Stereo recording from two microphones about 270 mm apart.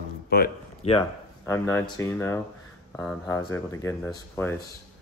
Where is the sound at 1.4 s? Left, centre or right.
Centre.